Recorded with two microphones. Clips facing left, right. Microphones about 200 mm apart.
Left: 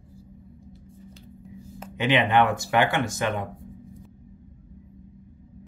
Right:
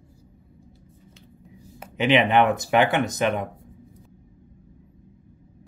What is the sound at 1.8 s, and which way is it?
Speech, 20° right (ahead or behind).